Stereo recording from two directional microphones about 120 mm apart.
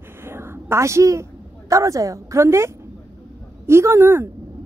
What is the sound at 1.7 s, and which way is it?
A woman's voice, 25° right (ahead or behind).